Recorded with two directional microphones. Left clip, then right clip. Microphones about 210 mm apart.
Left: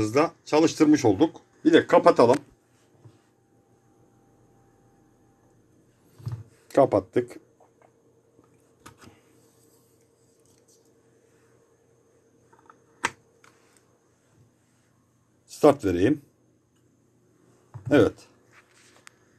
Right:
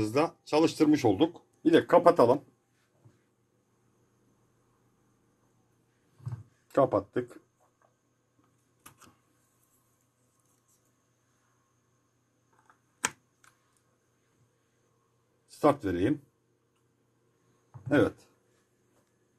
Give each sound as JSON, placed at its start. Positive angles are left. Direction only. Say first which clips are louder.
{"t": 0.1, "sound": "speech", "louder": "left 6 dB", "side_deg": -10}
{"t": 2.0, "sound": "speech", "louder": "left 4 dB", "side_deg": 5}
{"t": 6.7, "sound": "speech", "louder": "left 6 dB", "side_deg": 10}
{"t": 15.4, "sound": "speech", "louder": "left 7 dB", "side_deg": 20}
{"t": 17.8, "sound": "speech", "louder": "left 6 dB", "side_deg": 15}